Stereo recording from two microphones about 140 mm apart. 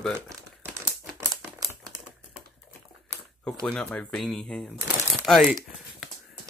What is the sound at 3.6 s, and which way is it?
Speech, 10° left (ahead or behind).